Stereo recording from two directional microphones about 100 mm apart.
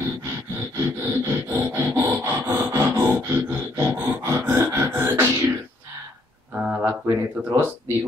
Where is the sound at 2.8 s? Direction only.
20° right (ahead or behind).